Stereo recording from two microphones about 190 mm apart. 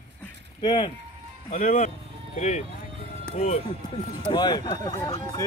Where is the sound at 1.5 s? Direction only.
40° left (ahead or behind).